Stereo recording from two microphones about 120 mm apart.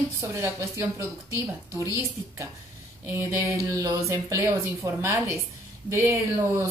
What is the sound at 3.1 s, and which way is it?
Speech, 25° right (ahead or behind).